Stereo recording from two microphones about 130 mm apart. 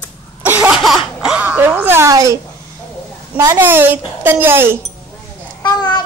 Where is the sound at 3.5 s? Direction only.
15° right (ahead or behind).